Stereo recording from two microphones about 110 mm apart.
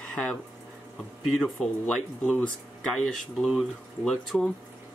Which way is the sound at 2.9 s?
Centre (ahead or behind).